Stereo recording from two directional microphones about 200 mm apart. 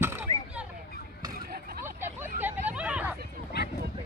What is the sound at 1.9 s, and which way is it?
Hubbub, 10° right (ahead or behind).